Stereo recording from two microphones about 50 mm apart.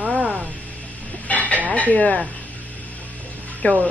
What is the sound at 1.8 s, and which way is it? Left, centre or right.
Speech, left.